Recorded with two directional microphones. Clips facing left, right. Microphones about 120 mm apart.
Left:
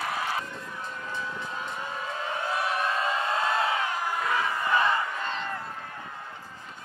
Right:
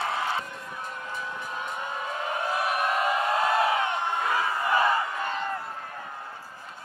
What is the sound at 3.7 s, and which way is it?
Crowd, 25° right (ahead or behind).